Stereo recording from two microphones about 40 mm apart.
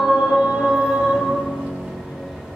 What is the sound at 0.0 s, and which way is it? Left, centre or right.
Music, centre.